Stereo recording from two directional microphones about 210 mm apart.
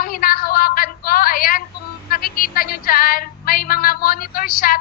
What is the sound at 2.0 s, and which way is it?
Music, 45° left (ahead or behind).